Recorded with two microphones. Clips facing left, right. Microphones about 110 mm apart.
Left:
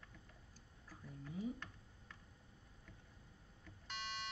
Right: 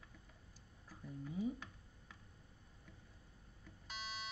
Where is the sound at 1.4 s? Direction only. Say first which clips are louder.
Right 3 dB; 10° right (ahead or behind).